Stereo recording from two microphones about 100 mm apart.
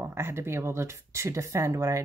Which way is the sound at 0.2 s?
25° right (ahead or behind).